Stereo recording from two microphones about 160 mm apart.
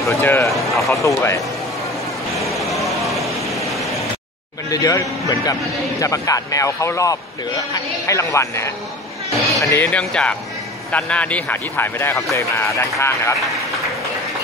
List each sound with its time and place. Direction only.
0.2 s speech: 15° left (ahead or behind)
0.5 s speech: centre (ahead or behind)
1.0 s a man's voice: 20° left (ahead or behind)
2.3 s vehicle: centre (ahead or behind)
4.6 s a man's voice: 20° left (ahead or behind)